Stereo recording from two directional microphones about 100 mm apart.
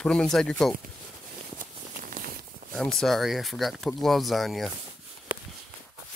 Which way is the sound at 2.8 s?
5° left (ahead or behind).